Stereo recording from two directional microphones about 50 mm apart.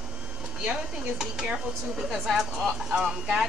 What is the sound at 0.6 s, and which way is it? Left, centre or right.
Speech, centre.